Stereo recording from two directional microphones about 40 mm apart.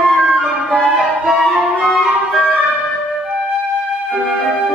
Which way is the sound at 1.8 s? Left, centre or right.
Centre.